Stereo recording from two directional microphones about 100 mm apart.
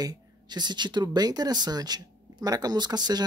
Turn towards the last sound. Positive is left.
turn(degrees=-45)  # may be behind; listen again after turning